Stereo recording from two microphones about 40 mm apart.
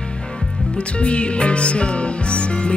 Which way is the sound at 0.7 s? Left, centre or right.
Left.